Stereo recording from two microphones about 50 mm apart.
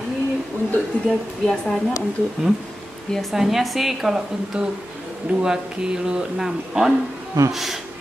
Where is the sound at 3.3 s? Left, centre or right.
Centre.